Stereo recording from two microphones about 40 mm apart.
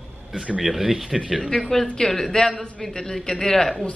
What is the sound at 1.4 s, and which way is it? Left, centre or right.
Speech, centre.